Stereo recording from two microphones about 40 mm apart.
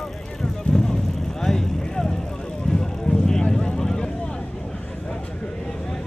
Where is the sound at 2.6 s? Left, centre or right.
Left.